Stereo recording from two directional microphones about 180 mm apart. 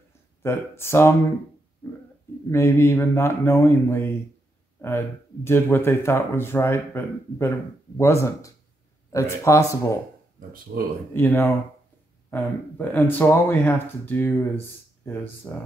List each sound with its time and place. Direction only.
0.4 s speech: 15° left (ahead or behind)
2.5 s speech: 15° left (ahead or behind)
11.1 s speech: 15° left (ahead or behind)